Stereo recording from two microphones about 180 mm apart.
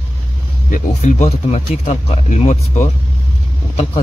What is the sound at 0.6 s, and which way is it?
Speech, 45° left (ahead or behind).